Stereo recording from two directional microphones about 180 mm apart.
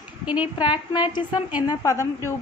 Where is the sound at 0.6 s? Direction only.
25° left (ahead or behind).